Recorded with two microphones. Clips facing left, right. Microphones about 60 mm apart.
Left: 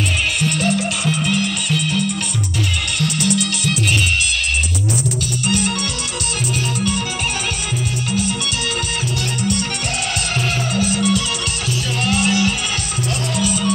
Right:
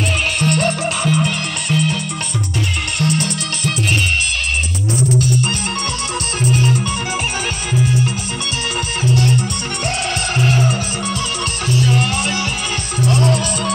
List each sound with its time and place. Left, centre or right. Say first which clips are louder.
0.4 s music: right 2 dB; right
3.0 s music: even; right
5.2 s music: right 1 dB; right
9.1 s music: right 5 dB; right